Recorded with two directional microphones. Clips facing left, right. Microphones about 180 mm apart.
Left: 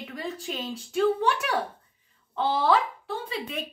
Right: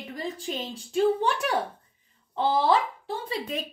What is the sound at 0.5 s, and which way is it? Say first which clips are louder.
Speech: right 1 dB; 30° right (ahead or behind).